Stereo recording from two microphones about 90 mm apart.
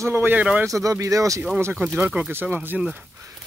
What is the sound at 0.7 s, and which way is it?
Speech, 35° right (ahead or behind).